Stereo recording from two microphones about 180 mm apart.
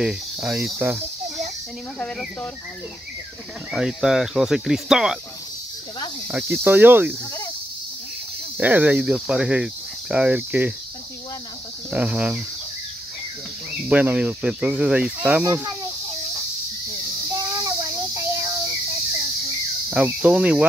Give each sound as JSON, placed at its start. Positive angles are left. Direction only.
{"t": 0.0, "sound": "speech", "side_deg": -5}
{"t": 3.7, "sound": "speech", "side_deg": -5}
{"t": 6.3, "sound": "speech", "side_deg": -10}
{"t": 8.5, "sound": "speech", "side_deg": -10}
{"t": 11.9, "sound": "speech", "side_deg": -5}
{"t": 13.8, "sound": "speech", "side_deg": -10}
{"t": 17.3, "sound": "child singing", "side_deg": -20}
{"t": 19.9, "sound": "speech", "side_deg": -5}